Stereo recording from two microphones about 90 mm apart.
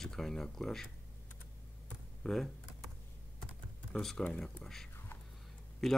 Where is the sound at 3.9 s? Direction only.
5° left (ahead or behind).